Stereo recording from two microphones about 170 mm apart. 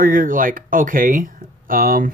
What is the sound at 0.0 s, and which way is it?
Speech, 55° right (ahead or behind).